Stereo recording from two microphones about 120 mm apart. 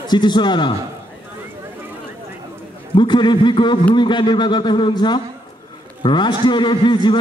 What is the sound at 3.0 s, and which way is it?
A man's voice, 40° left (ahead or behind).